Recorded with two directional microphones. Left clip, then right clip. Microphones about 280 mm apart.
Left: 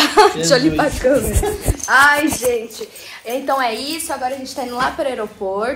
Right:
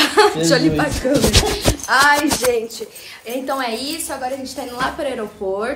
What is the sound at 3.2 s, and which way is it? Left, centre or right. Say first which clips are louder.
A woman's voice: left 4 dB; centre.